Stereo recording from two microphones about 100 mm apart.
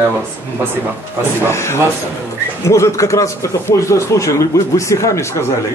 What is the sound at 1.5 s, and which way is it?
A man's voice, 30° left (ahead or behind).